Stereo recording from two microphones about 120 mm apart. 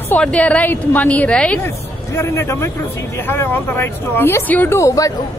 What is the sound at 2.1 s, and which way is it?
Speech, 20° left (ahead or behind).